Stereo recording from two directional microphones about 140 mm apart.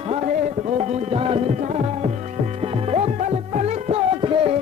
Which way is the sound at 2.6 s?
45° right (ahead or behind).